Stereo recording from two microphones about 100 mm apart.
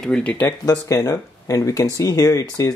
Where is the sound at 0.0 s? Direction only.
10° left (ahead or behind).